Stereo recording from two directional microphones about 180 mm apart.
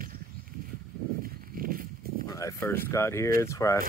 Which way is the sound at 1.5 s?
50° right (ahead or behind).